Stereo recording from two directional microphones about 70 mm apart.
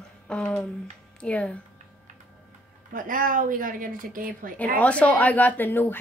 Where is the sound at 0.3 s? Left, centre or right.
Centre.